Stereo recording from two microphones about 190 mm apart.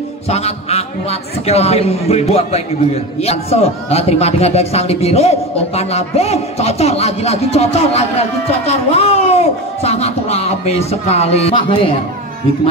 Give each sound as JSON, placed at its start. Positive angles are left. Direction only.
{"t": 0.3, "sound": "a man's voice", "side_deg": 35}